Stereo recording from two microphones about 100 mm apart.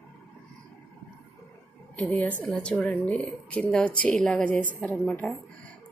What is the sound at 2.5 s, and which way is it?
Speech, 5° left (ahead or behind).